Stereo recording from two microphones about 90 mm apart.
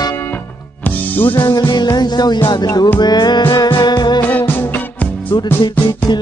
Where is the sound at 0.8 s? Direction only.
20° left (ahead or behind).